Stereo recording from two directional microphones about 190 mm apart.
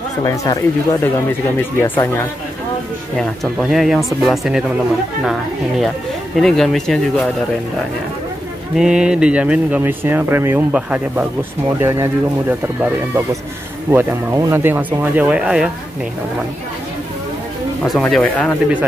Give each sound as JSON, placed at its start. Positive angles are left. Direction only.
{"t": 0.2, "sound": "speech", "side_deg": 15}
{"t": 3.2, "sound": "speech", "side_deg": 0}
{"t": 8.7, "sound": "speech", "side_deg": -5}
{"t": 17.8, "sound": "speech", "side_deg": 0}